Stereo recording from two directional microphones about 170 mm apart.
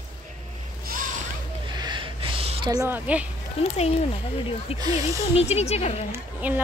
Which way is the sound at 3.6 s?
35° left (ahead or behind).